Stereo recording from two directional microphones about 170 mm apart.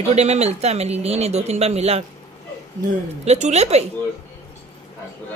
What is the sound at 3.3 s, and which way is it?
Speech, 40° right (ahead or behind).